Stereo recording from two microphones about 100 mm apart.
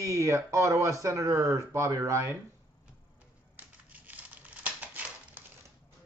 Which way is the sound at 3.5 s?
15° right (ahead or behind).